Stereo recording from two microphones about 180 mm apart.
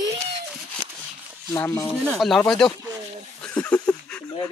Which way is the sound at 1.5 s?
15° left (ahead or behind).